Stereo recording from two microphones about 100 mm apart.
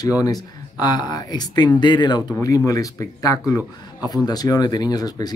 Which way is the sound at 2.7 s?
35° left (ahead or behind).